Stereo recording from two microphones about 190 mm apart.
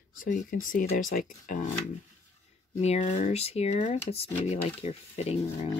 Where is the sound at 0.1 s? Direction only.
45° left (ahead or behind).